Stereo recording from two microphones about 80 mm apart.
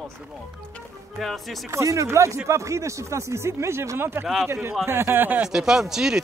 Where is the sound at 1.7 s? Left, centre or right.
Right.